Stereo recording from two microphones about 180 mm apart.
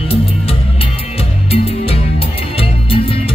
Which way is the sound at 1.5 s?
35° left (ahead or behind).